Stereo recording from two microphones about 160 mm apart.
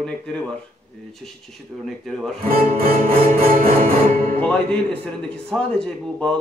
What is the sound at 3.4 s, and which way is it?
Music, 65° right (ahead or behind).